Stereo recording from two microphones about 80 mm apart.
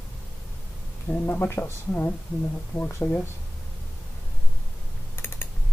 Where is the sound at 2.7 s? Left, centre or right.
Left.